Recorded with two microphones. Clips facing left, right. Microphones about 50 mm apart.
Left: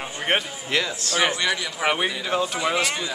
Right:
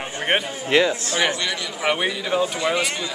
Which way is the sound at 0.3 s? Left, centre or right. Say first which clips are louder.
Right 2 dB; centre.